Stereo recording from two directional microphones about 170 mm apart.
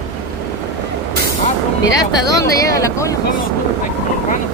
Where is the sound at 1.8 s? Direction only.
20° left (ahead or behind).